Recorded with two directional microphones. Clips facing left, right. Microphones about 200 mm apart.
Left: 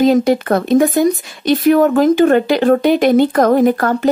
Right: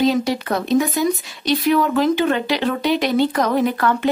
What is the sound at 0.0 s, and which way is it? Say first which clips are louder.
Speech: left 6 dB; 50° left (ahead or behind).